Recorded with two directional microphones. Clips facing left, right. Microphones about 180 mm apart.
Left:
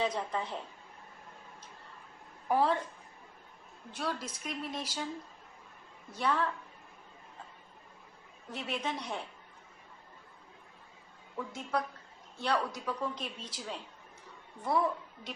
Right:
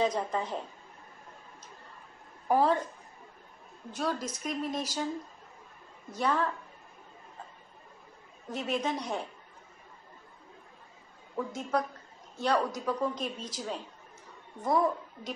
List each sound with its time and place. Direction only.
0.0 s a woman's voice: 40° right (ahead or behind)
2.4 s a woman's voice: 45° right (ahead or behind)
3.9 s a woman's voice: 40° right (ahead or behind)
6.1 s a woman's voice: 40° right (ahead or behind)
8.5 s a woman's voice: 40° right (ahead or behind)
11.3 s a woman's voice: 45° right (ahead or behind)